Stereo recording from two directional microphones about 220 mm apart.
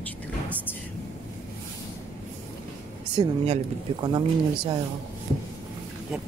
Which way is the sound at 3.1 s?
25° right (ahead or behind).